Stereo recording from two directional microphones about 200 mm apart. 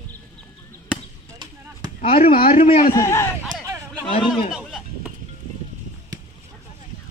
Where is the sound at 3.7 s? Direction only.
15° right (ahead or behind).